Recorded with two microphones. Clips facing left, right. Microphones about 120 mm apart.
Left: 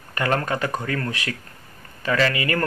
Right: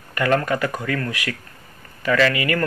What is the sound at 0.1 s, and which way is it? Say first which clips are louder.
Speech: right 3 dB; 30° left (ahead or behind).